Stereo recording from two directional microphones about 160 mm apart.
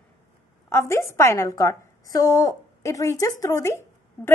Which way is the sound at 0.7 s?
15° left (ahead or behind).